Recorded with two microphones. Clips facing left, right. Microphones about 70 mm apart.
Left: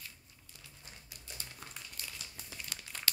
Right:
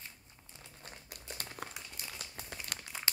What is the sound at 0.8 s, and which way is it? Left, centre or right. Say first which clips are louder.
Crumpling: right 6 dB; right.